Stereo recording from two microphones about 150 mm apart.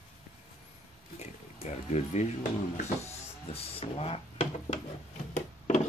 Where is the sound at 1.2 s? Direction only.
50° left (ahead or behind).